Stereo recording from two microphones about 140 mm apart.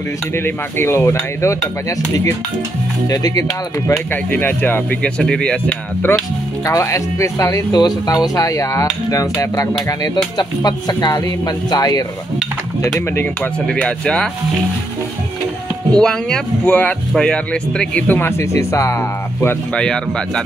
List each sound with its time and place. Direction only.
0.4 s speech: 15° left (ahead or behind)
4.1 s speech: 10° left (ahead or behind)
6.6 s speech: 20° left (ahead or behind)
13.1 s speech: 15° left (ahead or behind)
16.0 s speech: 5° left (ahead or behind)
19.7 s speech: 5° left (ahead or behind)